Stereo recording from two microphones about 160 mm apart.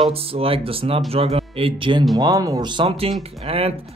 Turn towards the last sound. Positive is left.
turn(degrees=-35)  # may be behind; listen again after turning